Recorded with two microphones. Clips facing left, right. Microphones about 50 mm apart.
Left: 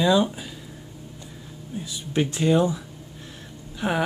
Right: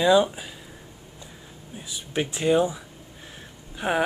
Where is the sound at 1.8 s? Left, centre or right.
Centre.